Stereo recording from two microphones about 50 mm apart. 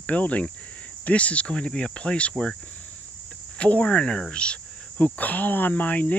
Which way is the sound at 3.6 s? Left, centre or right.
Left.